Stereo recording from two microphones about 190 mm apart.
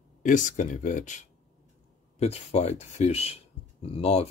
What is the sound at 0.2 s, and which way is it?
Speech, 40° left (ahead or behind).